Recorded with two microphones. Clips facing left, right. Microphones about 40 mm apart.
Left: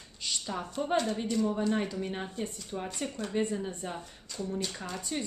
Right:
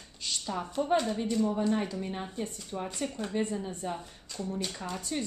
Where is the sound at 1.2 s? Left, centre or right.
Centre.